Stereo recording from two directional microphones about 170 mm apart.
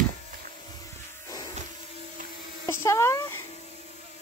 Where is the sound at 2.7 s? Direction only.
15° left (ahead or behind).